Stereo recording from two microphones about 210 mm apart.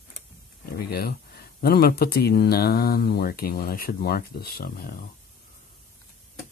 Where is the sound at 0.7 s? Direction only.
45° left (ahead or behind).